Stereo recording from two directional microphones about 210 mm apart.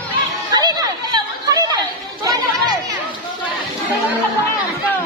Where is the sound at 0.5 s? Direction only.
20° right (ahead or behind).